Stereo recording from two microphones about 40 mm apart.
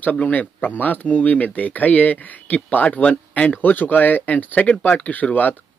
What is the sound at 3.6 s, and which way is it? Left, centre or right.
Speech, left.